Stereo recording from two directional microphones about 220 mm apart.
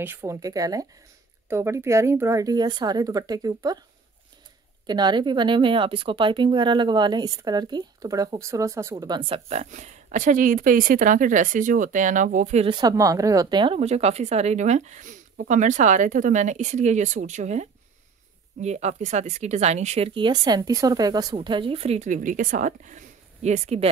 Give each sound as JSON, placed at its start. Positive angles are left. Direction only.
{"t": 0.0, "sound": "speech", "side_deg": -10}
{"t": 4.8, "sound": "speech", "side_deg": -20}